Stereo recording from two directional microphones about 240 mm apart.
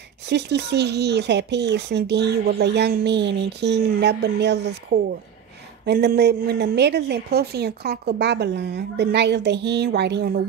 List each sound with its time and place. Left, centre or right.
0.3 s speech: right